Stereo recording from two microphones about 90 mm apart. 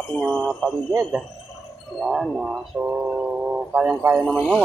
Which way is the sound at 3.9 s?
35° right (ahead or behind).